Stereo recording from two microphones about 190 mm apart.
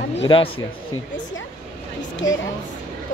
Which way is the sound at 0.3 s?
25° left (ahead or behind).